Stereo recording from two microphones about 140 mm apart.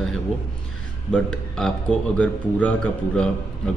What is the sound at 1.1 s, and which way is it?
A man's voice, 5° left (ahead or behind).